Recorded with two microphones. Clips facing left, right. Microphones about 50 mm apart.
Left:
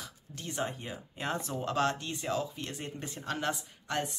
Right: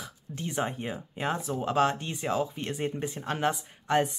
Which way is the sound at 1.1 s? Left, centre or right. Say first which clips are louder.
Right 3 dB; centre.